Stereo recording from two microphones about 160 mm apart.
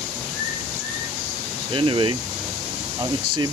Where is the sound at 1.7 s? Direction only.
30° right (ahead or behind).